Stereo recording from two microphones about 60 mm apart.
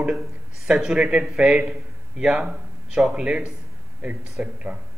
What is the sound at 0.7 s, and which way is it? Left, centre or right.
A man's voice, centre.